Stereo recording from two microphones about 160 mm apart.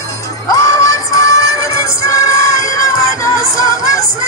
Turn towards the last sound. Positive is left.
turn(degrees=20)  # may be behind; listen again after turning